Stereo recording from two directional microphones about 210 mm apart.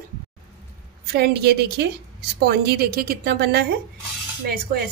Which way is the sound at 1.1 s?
50° right (ahead or behind).